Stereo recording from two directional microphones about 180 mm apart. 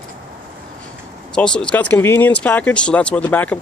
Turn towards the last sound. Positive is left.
turn(degrees=10)  # may be behind; listen again after turning